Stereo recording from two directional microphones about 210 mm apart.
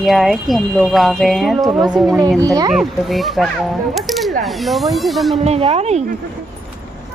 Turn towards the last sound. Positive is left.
turn(degrees=-30)  # may be behind; listen again after turning